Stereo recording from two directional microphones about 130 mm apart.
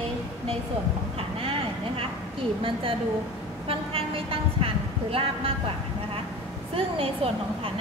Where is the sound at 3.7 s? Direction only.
45° right (ahead or behind).